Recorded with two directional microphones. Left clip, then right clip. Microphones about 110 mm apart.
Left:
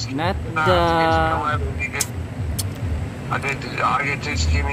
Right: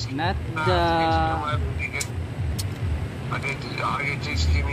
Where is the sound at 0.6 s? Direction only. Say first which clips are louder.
Left 4 dB; 30° left (ahead or behind).